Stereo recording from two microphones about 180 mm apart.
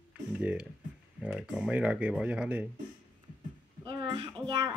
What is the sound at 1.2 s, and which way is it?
Speech, 5° right (ahead or behind).